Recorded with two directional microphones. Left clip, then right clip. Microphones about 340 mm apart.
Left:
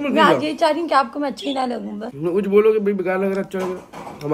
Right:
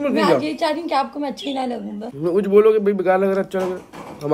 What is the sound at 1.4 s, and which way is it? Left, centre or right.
Speech, left.